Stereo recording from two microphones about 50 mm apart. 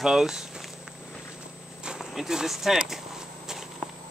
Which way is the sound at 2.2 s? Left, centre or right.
Centre.